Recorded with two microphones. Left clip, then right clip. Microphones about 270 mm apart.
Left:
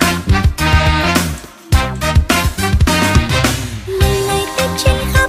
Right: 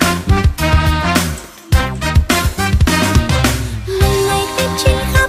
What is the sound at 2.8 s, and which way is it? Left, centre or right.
Music, centre.